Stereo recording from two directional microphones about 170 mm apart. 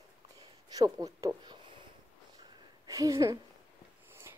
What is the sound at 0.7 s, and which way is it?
Speech, 20° right (ahead or behind).